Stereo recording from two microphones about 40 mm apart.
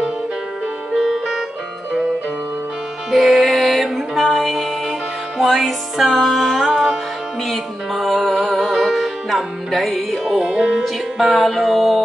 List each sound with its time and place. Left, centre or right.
0.9 s music: centre
3.1 s music: centre
6.7 s music: centre
7.4 s music: centre